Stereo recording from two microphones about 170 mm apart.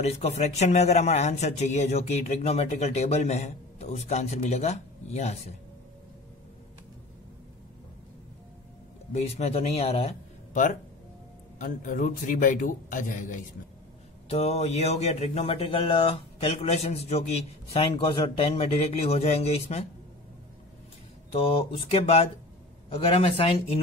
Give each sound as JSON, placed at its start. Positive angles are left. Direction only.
{"t": 0.0, "sound": "speech", "side_deg": 40}
{"t": 9.1, "sound": "a man's voice", "side_deg": 40}
{"t": 14.3, "sound": "speech", "side_deg": 40}
{"t": 21.3, "sound": "speech", "side_deg": 35}